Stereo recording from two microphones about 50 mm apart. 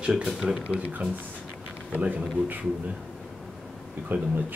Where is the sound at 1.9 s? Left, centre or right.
Right.